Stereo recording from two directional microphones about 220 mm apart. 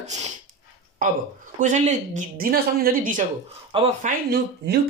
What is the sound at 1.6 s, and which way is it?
Speech, 35° right (ahead or behind).